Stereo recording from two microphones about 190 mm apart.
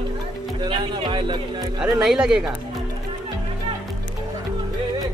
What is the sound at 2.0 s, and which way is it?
Speech, centre (ahead or behind).